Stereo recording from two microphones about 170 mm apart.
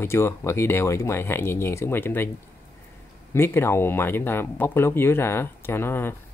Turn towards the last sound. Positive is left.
turn(degrees=15)  # may be behind; listen again after turning